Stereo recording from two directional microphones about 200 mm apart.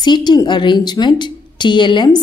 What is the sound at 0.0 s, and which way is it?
Speech, 20° left (ahead or behind).